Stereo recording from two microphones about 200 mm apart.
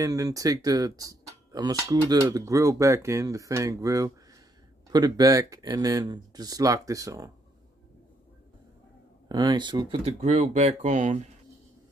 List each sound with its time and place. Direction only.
0.0 s speech: 15° right (ahead or behind)
9.3 s speech: 20° right (ahead or behind); by 11.1 s 35° right (ahead or behind)